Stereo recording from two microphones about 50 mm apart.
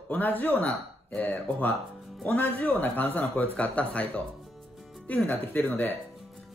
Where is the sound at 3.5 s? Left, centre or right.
Left.